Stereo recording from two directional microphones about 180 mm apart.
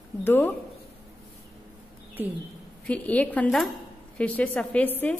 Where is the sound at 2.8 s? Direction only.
10° left (ahead or behind).